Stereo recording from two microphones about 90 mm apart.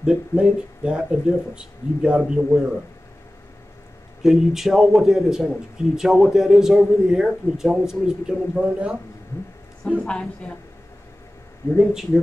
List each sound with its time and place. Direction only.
0.0 s a man's voice: 10° right (ahead or behind)
4.2 s a man's voice: 5° right (ahead or behind)
10.0 s a woman's voice: 10° left (ahead or behind)
11.8 s a man's voice: 5° right (ahead or behind)